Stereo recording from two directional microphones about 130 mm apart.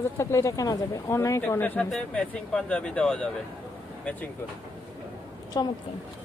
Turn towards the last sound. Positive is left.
turn(degrees=30)  # may be behind; listen again after turning